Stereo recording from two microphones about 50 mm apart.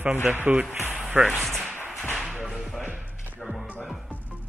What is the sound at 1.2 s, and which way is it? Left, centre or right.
Speech, right.